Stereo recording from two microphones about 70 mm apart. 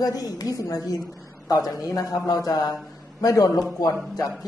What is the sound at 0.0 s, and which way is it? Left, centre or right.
A man's voice, left.